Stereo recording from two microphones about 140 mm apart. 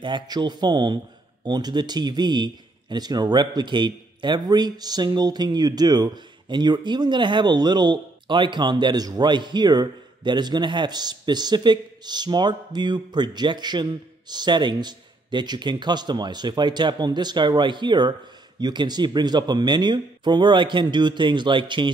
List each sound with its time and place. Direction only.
0.0 s speech: 35° right (ahead or behind)